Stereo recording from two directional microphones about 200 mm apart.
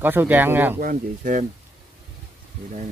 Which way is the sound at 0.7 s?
40° right (ahead or behind).